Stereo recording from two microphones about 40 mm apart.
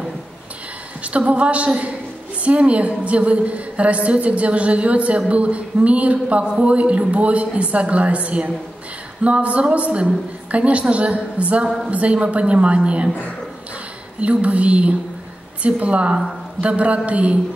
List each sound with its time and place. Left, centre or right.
1.0 s a woman's voice: right
14.2 s a woman's voice: right